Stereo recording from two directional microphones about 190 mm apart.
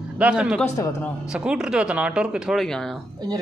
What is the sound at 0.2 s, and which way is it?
Speech, 5° right (ahead or behind).